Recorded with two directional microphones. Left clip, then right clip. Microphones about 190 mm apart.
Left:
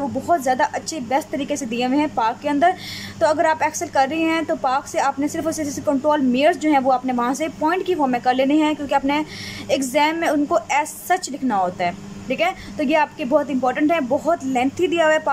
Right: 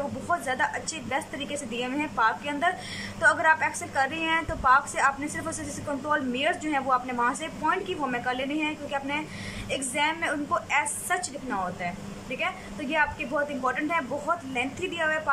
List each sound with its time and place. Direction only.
0.3 s a woman's voice: 30° left (ahead or behind)